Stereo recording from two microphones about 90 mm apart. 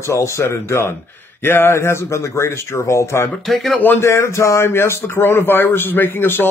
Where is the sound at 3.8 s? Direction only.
30° left (ahead or behind).